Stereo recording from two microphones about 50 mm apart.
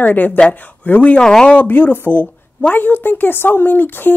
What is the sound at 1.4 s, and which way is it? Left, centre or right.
A man's voice, left.